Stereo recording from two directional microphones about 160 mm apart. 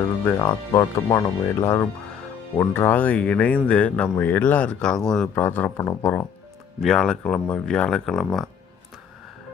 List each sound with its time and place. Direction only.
0.4 s speech: 30° left (ahead or behind); by 6.2 s 15° left (ahead or behind)
6.8 s speech: 5° left (ahead or behind)